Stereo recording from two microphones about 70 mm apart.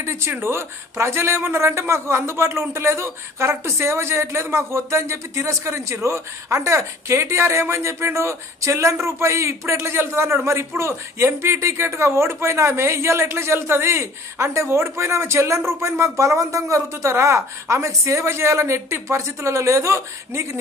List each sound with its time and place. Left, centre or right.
0.0 s a man's voice: right